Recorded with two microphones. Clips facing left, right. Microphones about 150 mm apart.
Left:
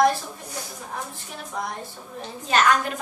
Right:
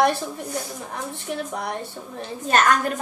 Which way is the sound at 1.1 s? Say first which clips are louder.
Right 5 dB; 65° right (ahead or behind).